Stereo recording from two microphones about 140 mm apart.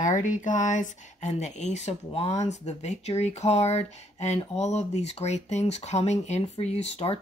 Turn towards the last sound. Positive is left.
turn(degrees=45)  # may be behind; listen again after turning